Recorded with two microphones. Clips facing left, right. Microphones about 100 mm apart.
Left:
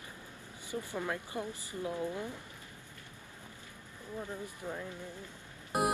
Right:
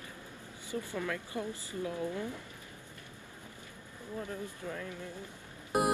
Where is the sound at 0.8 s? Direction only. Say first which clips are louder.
Even; 20° left (ahead or behind).